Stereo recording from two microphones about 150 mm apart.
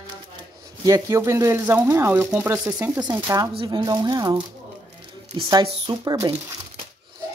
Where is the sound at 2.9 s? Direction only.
20° right (ahead or behind).